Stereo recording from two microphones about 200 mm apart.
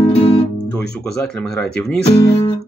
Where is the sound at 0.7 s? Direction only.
5° left (ahead or behind).